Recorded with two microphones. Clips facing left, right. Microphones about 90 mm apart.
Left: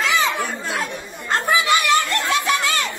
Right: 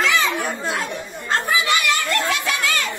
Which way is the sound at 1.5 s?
25° left (ahead or behind).